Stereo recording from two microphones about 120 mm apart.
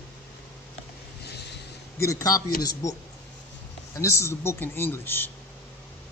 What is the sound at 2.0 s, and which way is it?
Speech, 25° left (ahead or behind).